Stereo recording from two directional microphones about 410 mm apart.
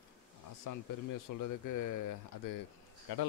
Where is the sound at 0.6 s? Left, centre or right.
Left.